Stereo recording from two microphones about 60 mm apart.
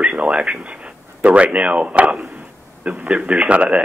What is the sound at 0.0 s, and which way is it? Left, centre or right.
Speech, right.